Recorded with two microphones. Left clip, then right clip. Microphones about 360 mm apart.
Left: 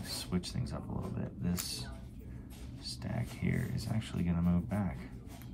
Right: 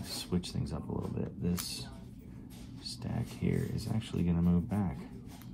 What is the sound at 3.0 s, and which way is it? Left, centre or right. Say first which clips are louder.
Speech: right 3 dB; centre.